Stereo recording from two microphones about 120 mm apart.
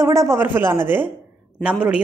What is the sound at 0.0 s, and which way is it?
A man's voice, 25° right (ahead or behind).